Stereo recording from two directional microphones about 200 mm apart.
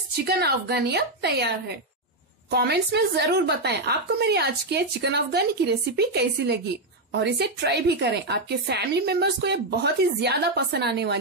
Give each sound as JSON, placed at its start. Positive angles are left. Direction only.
{"t": 0.4, "sound": "a woman's voice", "side_deg": -50}